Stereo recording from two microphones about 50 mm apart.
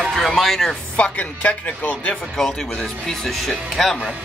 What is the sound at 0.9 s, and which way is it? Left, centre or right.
Speech, left.